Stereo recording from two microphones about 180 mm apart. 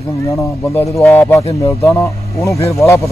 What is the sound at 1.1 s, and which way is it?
Speech, 10° left (ahead or behind).